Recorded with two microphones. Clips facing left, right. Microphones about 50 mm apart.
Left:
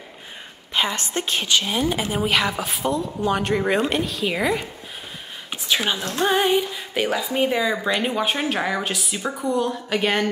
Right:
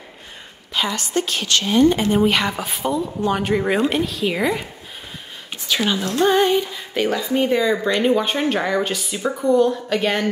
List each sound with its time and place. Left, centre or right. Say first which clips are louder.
0.7 s a woman's voice: right 2 dB; left
1.6 s speech: right 7 dB; centre
6.1 s speech: right 3 dB; centre